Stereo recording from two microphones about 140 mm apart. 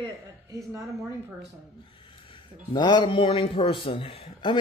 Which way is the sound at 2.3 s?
35° left (ahead or behind).